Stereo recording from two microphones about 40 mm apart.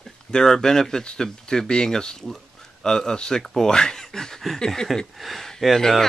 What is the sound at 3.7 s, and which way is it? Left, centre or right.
Speech, centre.